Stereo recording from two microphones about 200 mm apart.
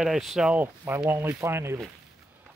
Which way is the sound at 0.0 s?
Centre (ahead or behind).